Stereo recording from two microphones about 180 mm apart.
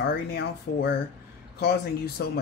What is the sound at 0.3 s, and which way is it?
Speech, 65° left (ahead or behind).